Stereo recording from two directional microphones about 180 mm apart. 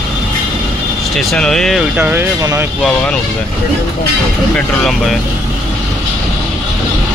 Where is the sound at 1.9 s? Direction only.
10° right (ahead or behind).